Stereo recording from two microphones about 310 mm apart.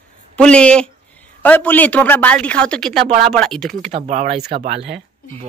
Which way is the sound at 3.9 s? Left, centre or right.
Right.